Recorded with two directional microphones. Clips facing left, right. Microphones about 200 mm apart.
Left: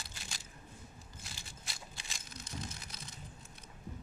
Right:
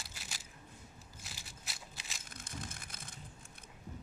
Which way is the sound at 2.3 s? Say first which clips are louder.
Left 2 dB; 50° right (ahead or behind).